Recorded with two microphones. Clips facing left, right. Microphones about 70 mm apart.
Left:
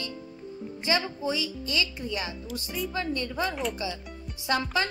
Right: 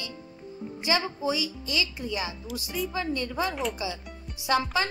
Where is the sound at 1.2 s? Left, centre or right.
Centre.